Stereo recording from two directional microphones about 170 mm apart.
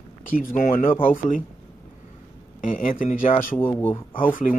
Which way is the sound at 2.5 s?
50° left (ahead or behind).